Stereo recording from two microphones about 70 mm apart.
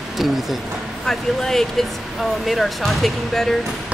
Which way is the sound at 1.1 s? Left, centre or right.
Centre.